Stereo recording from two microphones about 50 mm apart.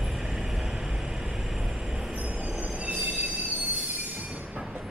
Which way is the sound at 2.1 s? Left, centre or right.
Right.